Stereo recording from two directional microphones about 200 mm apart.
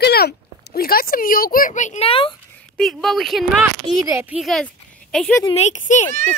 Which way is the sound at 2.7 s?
Centre (ahead or behind).